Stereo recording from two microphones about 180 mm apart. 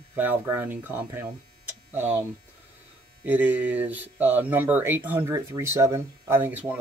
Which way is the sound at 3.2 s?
10° right (ahead or behind).